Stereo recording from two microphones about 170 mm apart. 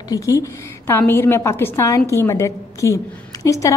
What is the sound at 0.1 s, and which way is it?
A woman's voice, 20° left (ahead or behind).